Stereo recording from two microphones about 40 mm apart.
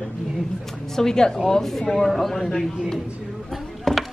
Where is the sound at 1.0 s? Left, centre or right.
Centre.